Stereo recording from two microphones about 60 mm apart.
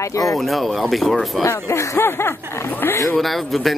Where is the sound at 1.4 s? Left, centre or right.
Left.